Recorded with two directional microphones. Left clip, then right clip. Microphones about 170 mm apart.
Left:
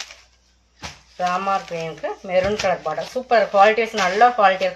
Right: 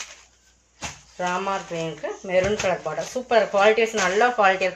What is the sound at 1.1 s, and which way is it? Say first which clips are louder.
Speech: left 4 dB; 5° right (ahead or behind).